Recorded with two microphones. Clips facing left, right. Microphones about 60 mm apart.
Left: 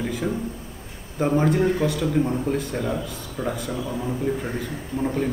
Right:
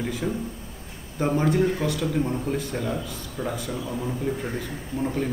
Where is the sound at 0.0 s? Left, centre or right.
Centre.